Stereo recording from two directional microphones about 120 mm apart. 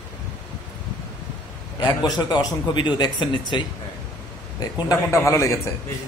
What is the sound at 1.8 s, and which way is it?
A man's voice, 35° left (ahead or behind).